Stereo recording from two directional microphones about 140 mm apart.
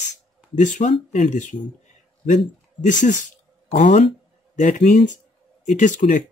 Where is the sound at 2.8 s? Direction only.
65° left (ahead or behind).